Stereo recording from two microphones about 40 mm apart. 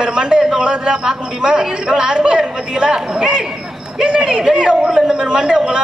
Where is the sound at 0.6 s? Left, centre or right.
Right.